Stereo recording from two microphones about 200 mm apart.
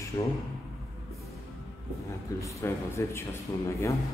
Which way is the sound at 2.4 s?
15° left (ahead or behind).